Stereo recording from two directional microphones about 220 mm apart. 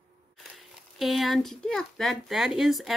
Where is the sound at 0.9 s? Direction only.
Centre (ahead or behind).